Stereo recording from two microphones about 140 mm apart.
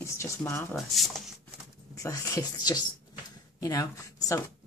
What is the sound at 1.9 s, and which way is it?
Speech, 25° left (ahead or behind).